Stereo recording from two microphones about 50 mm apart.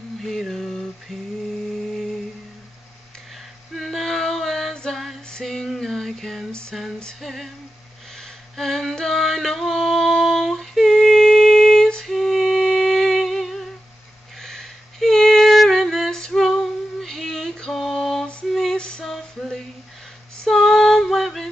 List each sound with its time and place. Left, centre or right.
0.5 s mantra: centre
1.1 s female singing: centre
3.7 s female singing: centre
5.3 s music: centre
5.8 s a sound: centre
7.0 s female singing: centre
8.2 s a sound: centre
12.2 s music: centre
14.4 s female singing: centre
17.7 s a sound: centre
18.5 s female singing: centre
18.8 s female singing: centre
19.1 s music: centre